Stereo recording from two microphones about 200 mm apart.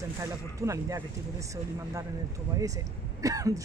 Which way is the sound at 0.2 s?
15° right (ahead or behind).